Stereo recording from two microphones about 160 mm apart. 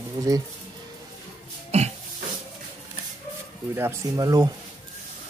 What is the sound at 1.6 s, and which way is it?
Music, 40° right (ahead or behind).